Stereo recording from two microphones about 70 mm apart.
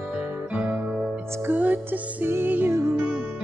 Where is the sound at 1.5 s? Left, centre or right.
Right.